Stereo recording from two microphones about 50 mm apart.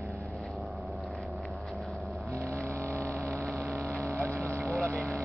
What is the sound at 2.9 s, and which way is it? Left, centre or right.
Hum, right.